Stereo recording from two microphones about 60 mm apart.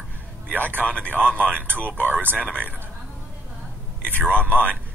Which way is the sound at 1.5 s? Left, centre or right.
Right.